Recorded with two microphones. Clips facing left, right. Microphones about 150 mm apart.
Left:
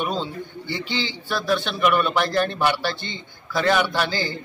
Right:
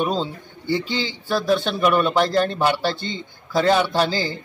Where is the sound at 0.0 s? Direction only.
35° right (ahead or behind).